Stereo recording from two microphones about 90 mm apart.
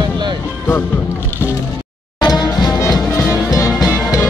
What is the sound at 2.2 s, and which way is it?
Music, 45° left (ahead or behind).